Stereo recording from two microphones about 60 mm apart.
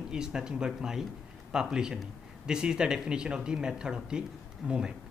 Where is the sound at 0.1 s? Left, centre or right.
Centre.